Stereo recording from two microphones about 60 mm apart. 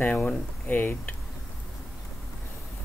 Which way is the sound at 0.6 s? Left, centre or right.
Left.